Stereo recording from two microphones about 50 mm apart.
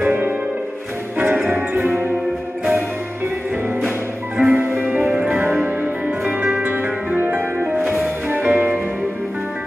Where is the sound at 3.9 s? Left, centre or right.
Right.